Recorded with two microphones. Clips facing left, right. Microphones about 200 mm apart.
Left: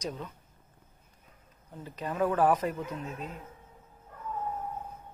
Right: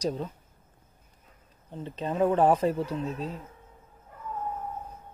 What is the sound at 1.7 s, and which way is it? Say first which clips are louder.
Speech: right 5 dB; 25° right (ahead or behind).